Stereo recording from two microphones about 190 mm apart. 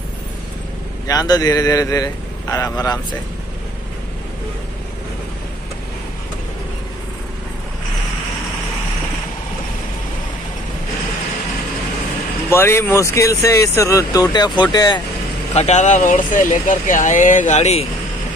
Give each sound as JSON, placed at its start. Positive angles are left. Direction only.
{"t": 1.0, "sound": "speech", "side_deg": 20}
{"t": 12.4, "sound": "speech", "side_deg": 15}
{"t": 15.5, "sound": "speech", "side_deg": 35}